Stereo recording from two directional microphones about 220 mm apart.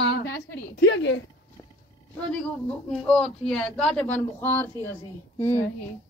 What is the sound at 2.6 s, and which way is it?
A man's voice, 5° left (ahead or behind).